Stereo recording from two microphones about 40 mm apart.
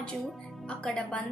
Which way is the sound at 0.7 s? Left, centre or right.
Left.